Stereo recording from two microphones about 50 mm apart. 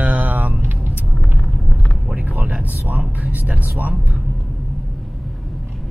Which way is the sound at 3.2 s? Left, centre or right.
Right.